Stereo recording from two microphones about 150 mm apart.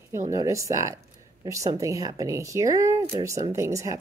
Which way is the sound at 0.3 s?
20° right (ahead or behind).